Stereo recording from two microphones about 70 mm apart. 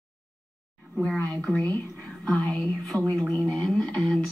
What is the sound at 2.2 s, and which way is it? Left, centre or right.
Speech, centre.